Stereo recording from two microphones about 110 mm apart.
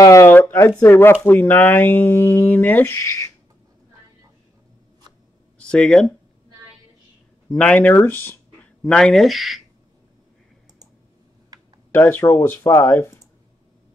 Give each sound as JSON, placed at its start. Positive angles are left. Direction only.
{"t": 0.0, "sound": "speech", "side_deg": 25}
{"t": 5.6, "sound": "speech", "side_deg": 10}
{"t": 7.4, "sound": "speech", "side_deg": 10}
{"t": 8.8, "sound": "speech", "side_deg": 5}
{"t": 11.5, "sound": "a sound", "side_deg": -35}
{"t": 11.9, "sound": "speech", "side_deg": 20}